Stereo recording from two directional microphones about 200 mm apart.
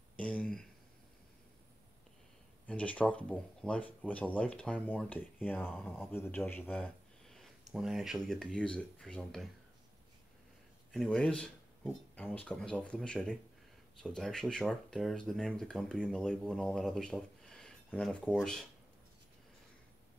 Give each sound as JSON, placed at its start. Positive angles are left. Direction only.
{"t": 0.2, "sound": "speech", "side_deg": 5}
{"t": 2.6, "sound": "speech", "side_deg": 5}
{"t": 10.9, "sound": "speech", "side_deg": 0}